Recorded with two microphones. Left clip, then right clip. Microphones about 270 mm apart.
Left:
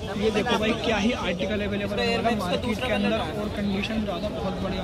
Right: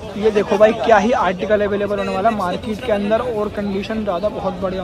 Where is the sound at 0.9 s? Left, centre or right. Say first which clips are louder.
Right 12 dB; right.